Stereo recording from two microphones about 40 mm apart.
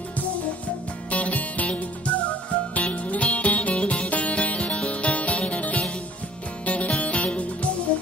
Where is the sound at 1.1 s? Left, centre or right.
Left.